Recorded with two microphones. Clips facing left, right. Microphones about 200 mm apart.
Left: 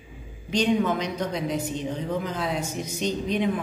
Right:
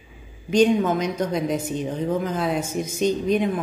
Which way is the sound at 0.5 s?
45° right (ahead or behind).